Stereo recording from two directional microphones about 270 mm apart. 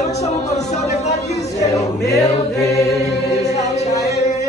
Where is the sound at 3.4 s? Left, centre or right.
Left.